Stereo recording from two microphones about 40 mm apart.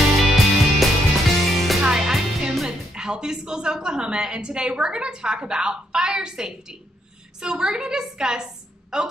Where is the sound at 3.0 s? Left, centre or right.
Centre.